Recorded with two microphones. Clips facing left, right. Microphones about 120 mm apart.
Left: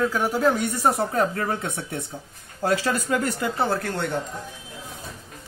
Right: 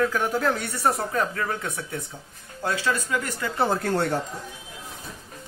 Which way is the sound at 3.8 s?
35° right (ahead or behind).